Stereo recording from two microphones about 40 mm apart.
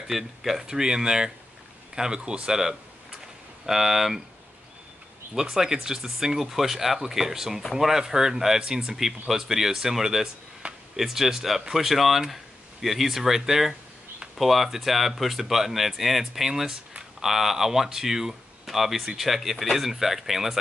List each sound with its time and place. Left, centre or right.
0.1 s speech: centre
5.3 s speech: centre